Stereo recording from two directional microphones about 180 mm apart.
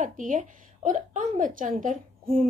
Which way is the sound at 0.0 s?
45° right (ahead or behind).